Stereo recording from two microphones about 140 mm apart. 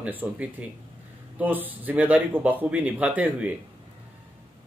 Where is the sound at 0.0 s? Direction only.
10° right (ahead or behind).